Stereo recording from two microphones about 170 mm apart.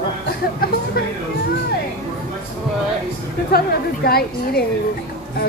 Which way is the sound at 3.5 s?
65° left (ahead or behind).